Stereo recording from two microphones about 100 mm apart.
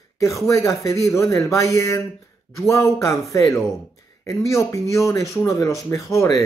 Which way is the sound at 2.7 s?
30° left (ahead or behind).